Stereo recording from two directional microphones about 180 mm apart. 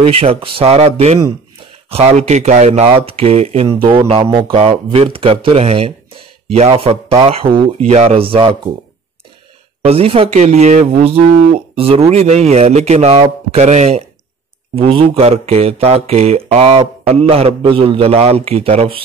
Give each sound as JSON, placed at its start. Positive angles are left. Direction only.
{"t": 0.0, "sound": "speech", "side_deg": -35}
{"t": 9.8, "sound": "speech", "side_deg": -35}